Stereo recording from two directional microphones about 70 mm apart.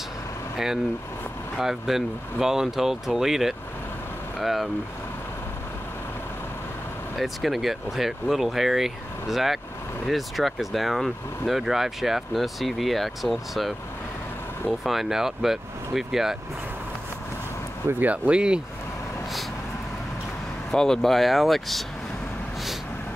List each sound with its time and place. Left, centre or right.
1.6 s speech: centre
7.2 s speech: centre
14.8 s speech: centre
17.8 s speech: right
20.7 s speech: centre